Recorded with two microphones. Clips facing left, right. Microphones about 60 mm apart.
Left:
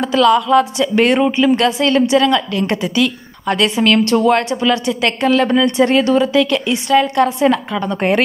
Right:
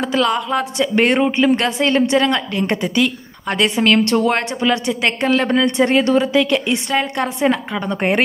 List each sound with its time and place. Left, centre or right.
0.0 s a woman's voice: right